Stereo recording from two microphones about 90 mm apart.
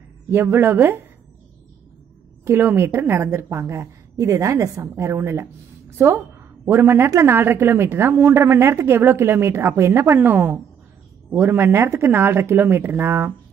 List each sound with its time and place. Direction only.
0.3 s a woman's voice: 25° right (ahead or behind)
2.4 s a woman's voice: 25° right (ahead or behind)